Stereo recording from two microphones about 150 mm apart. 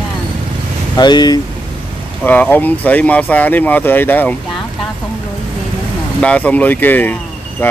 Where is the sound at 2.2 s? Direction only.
10° left (ahead or behind).